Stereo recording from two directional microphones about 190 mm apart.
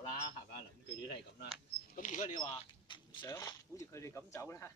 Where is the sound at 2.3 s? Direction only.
25° left (ahead or behind).